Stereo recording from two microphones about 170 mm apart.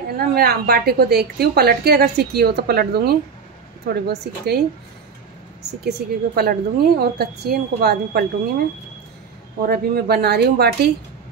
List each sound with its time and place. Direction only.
0.3 s a woman's voice: 65° right (ahead or behind)
5.9 s a woman's voice: 70° right (ahead or behind)
9.6 s a woman's voice: 70° right (ahead or behind)